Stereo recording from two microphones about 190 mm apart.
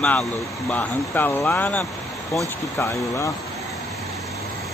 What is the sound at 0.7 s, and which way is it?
Speech, 10° left (ahead or behind).